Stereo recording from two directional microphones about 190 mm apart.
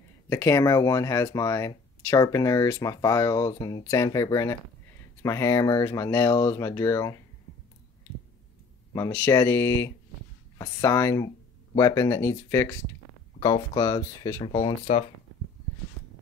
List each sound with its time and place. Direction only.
0.3 s speech: 15° left (ahead or behind)
8.9 s speech: 15° left (ahead or behind)